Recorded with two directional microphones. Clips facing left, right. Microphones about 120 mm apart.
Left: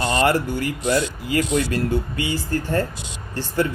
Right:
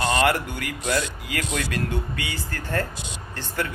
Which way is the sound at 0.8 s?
20° left (ahead or behind).